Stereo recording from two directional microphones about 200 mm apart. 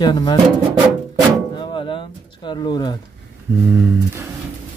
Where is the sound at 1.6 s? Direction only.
25° left (ahead or behind).